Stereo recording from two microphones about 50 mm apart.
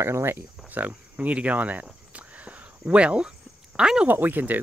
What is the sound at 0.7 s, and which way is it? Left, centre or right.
Cricket, right.